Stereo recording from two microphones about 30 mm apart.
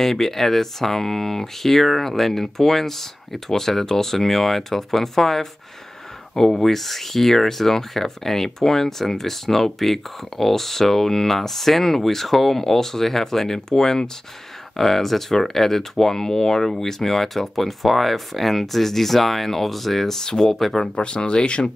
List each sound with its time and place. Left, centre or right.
0.0 s speech: centre
14.8 s speech: centre
20.2 s speech: centre
20.9 s speech: left